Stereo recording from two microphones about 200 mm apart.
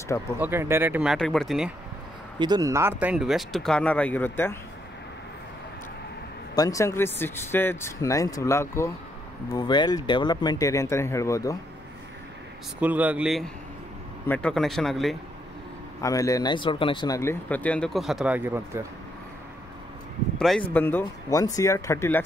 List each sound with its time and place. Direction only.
0.4 s speech: 10° right (ahead or behind)
2.3 s speech: 20° right (ahead or behind); by 4.6 s 10° left (ahead or behind)
6.5 s speech: 15° left (ahead or behind)
12.8 s speech: 10° right (ahead or behind)
16.0 s speech: 15° left (ahead or behind); by 18.9 s 10° right (ahead or behind)
20.3 s speech: centre (ahead or behind)